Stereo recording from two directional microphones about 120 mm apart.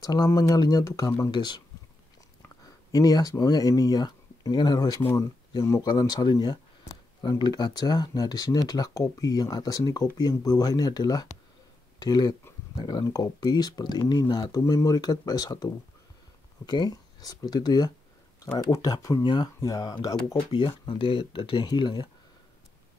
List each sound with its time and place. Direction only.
0.0 s speech: 30° left (ahead or behind)
1.3 s speech: 40° left (ahead or behind)